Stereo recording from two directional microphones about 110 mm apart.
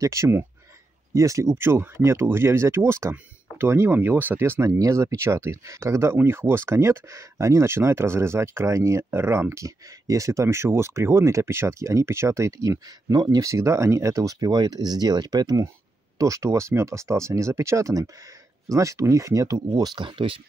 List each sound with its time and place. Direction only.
0.0 s speech: 30° right (ahead or behind)
20.1 s speech: 50° right (ahead or behind)